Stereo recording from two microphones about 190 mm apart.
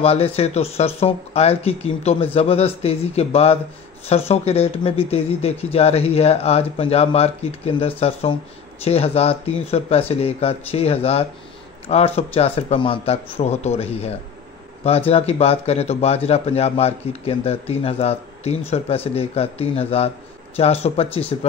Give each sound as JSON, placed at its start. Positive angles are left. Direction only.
{"t": 0.0, "sound": "speech", "side_deg": 30}